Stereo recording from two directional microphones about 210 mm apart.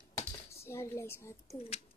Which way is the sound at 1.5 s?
30° left (ahead or behind).